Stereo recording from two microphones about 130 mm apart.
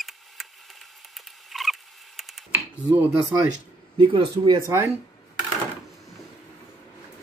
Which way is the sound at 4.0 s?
40° right (ahead or behind).